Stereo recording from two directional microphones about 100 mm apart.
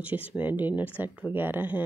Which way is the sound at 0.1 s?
15° right (ahead or behind).